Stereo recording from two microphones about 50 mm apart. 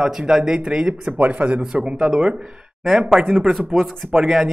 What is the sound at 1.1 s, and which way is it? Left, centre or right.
Speech, right.